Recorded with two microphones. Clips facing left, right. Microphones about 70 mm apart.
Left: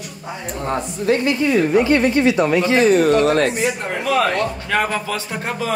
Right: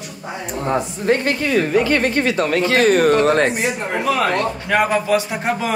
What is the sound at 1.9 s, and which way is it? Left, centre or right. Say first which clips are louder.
Speech: left 3 dB; right.